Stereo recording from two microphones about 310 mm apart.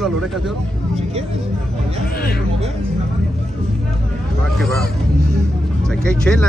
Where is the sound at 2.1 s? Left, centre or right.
Left.